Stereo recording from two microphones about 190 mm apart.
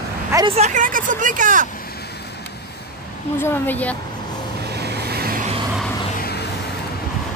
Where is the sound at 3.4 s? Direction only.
10° left (ahead or behind).